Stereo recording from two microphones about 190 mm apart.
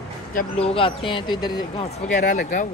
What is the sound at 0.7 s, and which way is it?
Speech, 30° left (ahead or behind).